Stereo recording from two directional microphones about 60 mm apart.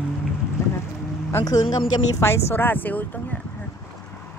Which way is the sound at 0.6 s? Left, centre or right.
Left.